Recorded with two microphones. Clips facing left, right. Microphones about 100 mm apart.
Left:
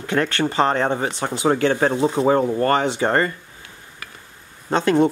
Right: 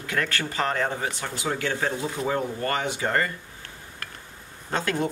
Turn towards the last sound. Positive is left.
turn(degrees=25)  # may be behind; listen again after turning